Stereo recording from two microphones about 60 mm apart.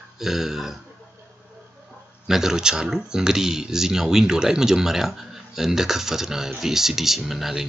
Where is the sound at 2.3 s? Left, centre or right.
Centre.